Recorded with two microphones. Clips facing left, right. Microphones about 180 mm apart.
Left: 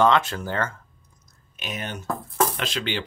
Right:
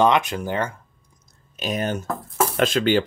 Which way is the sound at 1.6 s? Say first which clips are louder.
Right 8 dB; 40° right (ahead or behind).